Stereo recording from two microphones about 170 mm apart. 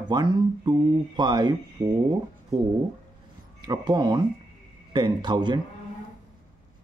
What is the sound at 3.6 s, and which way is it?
Speech, 25° right (ahead or behind).